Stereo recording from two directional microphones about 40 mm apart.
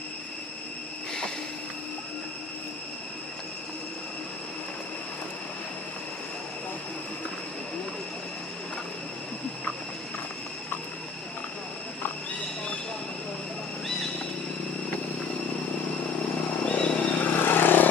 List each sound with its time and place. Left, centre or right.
16.6 s a sound: left
17.1 s vehicle: left
17.4 s vehicle: left